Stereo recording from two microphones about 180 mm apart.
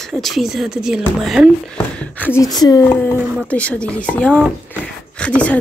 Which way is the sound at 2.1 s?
10° left (ahead or behind).